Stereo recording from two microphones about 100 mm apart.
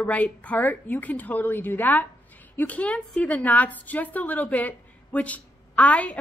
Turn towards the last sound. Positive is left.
turn(degrees=15)  # may be behind; listen again after turning